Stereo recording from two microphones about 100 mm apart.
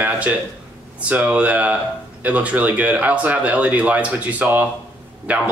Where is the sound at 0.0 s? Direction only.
15° right (ahead or behind).